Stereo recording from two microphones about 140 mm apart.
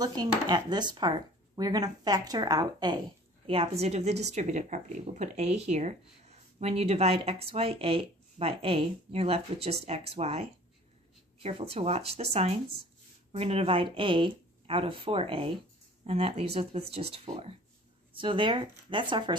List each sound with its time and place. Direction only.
0.0 s speech: 30° right (ahead or behind)
3.4 s speech: 40° right (ahead or behind)